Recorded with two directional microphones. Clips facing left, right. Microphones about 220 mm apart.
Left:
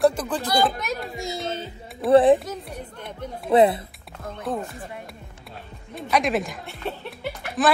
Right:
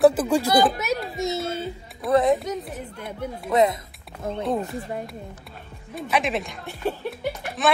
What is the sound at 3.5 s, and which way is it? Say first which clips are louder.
Speech: left 3 dB; 30° left (ahead or behind).